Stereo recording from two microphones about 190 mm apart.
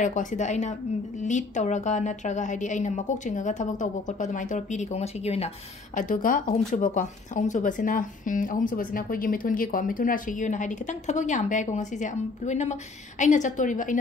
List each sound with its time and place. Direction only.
0.0 s a woman's voice: 40° left (ahead or behind)